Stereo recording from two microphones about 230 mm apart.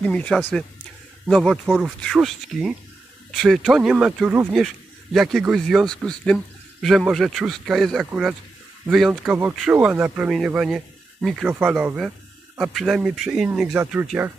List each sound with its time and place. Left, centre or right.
0.0 s speech: centre